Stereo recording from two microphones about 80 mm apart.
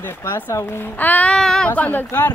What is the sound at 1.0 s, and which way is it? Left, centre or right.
Child singing, left.